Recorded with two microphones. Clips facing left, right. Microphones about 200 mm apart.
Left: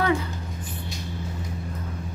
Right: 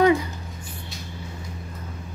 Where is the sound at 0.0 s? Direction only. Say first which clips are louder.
Right 6 dB; 15° right (ahead or behind).